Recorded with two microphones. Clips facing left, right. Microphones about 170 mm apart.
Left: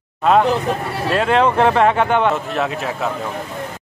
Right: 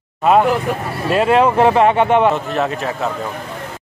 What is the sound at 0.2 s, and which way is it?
Speech, 5° right (ahead or behind).